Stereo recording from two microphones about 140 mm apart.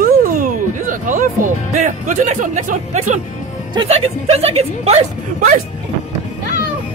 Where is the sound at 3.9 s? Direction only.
45° right (ahead or behind).